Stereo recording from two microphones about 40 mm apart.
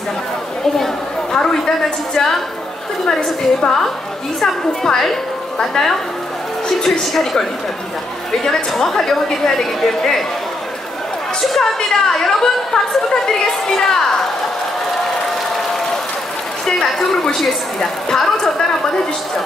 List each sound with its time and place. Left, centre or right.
1.3 s a woman's voice: centre
3.1 s a woman's voice: left
8.7 s a woman's voice: centre
11.4 s a woman's voice: centre
16.6 s a woman's voice: centre